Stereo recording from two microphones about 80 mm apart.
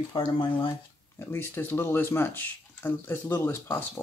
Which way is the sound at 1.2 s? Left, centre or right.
Left.